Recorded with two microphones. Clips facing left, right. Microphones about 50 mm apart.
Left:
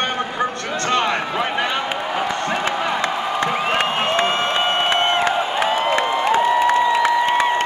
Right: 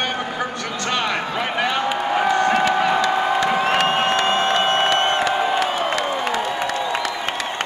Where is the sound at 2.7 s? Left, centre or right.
Left.